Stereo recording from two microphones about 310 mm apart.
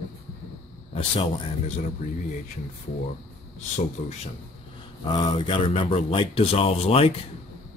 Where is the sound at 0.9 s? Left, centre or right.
Centre.